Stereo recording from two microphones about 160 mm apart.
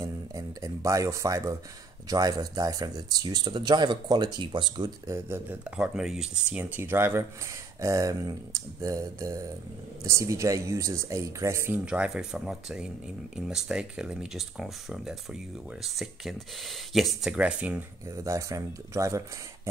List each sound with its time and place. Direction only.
0.0 s a sound: 20° right (ahead or behind)
2.0 s speech: 25° right (ahead or behind)
5.8 s speech: 5° right (ahead or behind)
18.0 s speech: 20° right (ahead or behind)